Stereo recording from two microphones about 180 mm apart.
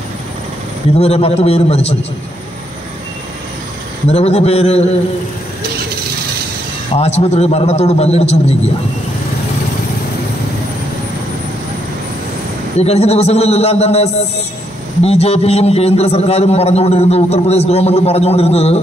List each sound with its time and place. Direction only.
0.9 s a man's voice: 35° left (ahead or behind)
4.1 s a man's voice: 35° left (ahead or behind)
7.0 s a man's voice: 35° left (ahead or behind)
12.7 s a man's voice: 35° left (ahead or behind)